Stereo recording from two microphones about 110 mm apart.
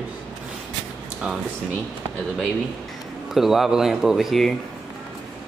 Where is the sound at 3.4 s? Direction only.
5° right (ahead or behind).